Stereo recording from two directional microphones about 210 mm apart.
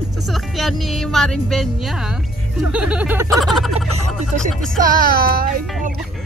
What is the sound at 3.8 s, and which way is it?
Speech, 35° right (ahead or behind).